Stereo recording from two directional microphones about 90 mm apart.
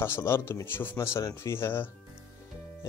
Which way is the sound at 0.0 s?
25° left (ahead or behind).